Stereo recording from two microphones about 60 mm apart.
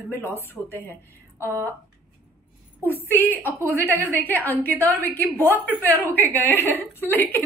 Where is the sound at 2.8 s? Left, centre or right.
Left.